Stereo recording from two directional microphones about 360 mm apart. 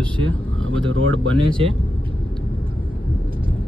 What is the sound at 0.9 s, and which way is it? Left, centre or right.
Speech, right.